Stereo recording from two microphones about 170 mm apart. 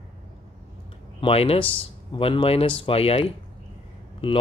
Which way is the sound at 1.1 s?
35° left (ahead or behind).